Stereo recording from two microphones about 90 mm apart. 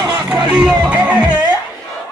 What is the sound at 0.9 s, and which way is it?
Music, 15° right (ahead or behind).